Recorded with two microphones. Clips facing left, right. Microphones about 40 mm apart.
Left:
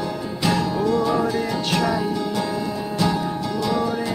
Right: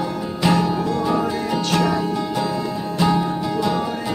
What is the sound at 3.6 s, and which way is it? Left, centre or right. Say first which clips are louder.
Music: even; right.